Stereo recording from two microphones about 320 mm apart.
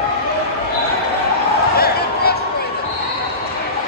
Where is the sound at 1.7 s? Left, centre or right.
Left.